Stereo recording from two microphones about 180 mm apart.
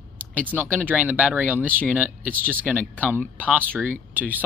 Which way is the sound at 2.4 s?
10° right (ahead or behind).